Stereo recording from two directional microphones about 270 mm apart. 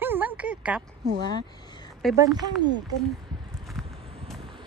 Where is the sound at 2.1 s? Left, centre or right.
Centre.